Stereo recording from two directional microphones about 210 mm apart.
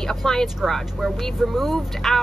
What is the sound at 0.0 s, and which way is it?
Speech, centre (ahead or behind).